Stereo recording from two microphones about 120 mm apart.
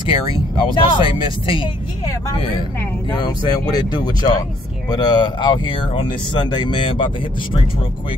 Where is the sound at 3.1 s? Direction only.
35° left (ahead or behind).